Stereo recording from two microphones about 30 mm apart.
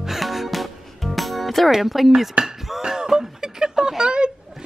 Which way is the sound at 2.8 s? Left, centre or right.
Right.